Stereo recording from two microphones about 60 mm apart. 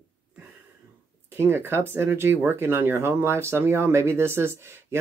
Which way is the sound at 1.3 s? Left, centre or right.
Right.